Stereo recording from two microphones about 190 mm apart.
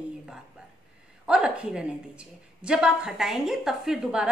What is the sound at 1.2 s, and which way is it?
A woman's voice, 5° right (ahead or behind).